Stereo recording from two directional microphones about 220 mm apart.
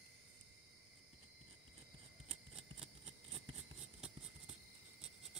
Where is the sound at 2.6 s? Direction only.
25° right (ahead or behind).